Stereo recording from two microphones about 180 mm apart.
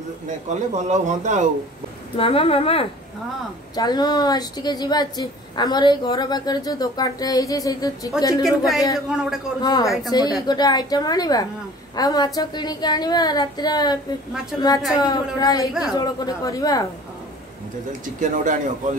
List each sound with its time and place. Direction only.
0.7 s a man's voice: 40° right (ahead or behind)
2.1 s a woman's voice: 30° left (ahead or behind)
8.4 s speech: centre (ahead or behind)
9.6 s a woman's voice: 20° left (ahead or behind)
14.5 s speech: centre (ahead or behind)
15.0 s a woman's voice: 20° left (ahead or behind)
15.6 s speech: 5° right (ahead or behind)
16.0 s a woman's voice: 20° left (ahead or behind)
18.2 s speech: 45° right (ahead or behind)